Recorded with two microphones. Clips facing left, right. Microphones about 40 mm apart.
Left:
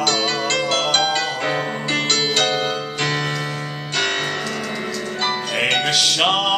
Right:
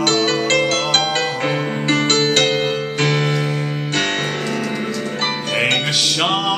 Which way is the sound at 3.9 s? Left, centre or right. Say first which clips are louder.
Even; right.